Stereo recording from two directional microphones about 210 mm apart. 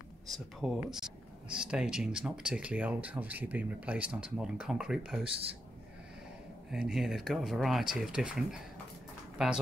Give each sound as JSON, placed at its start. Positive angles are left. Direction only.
{"t": 0.3, "sound": "speech", "side_deg": 0}
{"t": 5.2, "sound": "speech", "side_deg": -25}
{"t": 6.7, "sound": "speech", "side_deg": 0}